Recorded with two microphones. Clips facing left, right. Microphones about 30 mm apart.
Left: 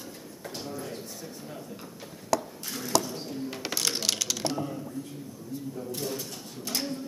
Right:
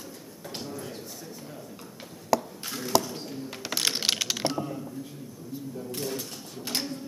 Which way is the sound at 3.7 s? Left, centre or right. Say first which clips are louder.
Right 3 dB; right.